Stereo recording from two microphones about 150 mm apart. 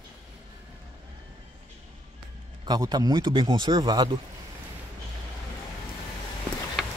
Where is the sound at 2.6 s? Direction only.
25° right (ahead or behind).